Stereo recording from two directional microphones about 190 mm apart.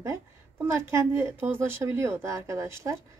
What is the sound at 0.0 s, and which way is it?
A woman's voice, 15° right (ahead or behind).